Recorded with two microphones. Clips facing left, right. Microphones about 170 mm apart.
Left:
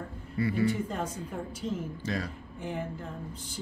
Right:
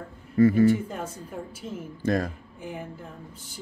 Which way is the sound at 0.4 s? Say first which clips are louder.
Right 9 dB; 45° right (ahead or behind).